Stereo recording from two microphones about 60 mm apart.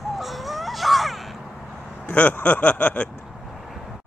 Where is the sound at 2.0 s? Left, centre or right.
Left.